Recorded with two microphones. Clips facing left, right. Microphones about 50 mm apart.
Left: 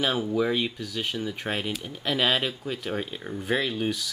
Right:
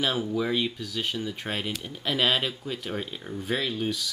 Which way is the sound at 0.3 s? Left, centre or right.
Centre.